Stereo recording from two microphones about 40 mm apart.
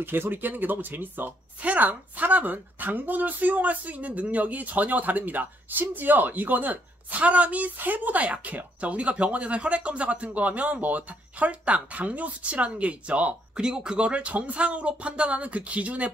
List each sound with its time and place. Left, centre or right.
0.0 s speech: right
1.6 s speech: right
13.6 s speech: right